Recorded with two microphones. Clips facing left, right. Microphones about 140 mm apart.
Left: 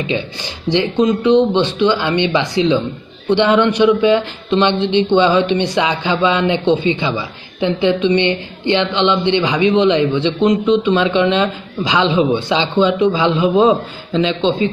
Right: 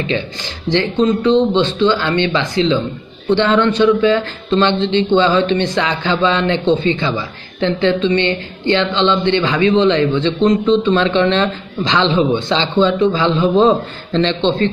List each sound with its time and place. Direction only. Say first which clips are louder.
0.0 s a man's voice: even; 15° left (ahead or behind)